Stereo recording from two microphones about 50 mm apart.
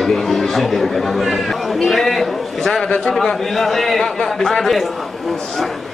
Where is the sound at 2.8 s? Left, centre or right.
Centre.